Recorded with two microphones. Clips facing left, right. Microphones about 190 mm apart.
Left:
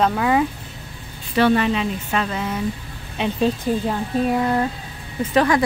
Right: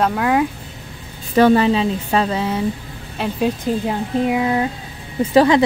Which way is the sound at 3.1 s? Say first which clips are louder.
Even; 5° right (ahead or behind).